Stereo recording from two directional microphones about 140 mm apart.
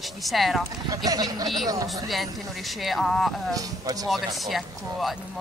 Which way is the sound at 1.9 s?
Centre (ahead or behind).